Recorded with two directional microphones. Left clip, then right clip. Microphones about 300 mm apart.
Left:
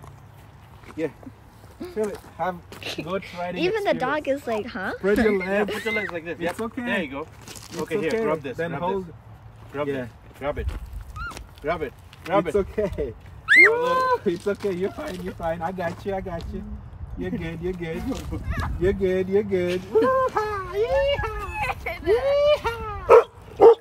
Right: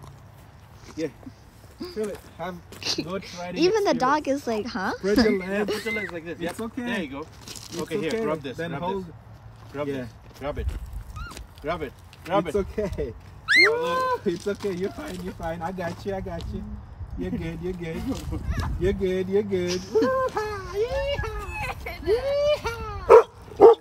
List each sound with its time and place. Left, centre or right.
2.0 s speech: centre
2.8 s speech: centre
9.7 s a sound: centre
11.6 s speech: centre
23.0 s dog: right